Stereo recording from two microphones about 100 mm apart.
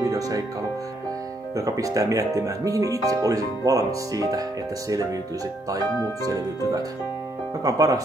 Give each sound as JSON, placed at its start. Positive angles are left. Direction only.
{"t": 0.0, "sound": "music", "side_deg": -35}
{"t": 1.5, "sound": "speech", "side_deg": -35}
{"t": 6.2, "sound": "speech", "side_deg": -35}